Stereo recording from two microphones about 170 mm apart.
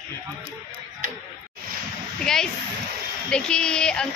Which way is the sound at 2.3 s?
5° left (ahead or behind).